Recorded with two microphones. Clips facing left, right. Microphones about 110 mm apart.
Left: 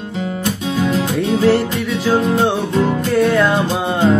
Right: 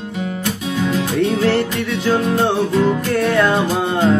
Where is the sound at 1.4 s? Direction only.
5° left (ahead or behind).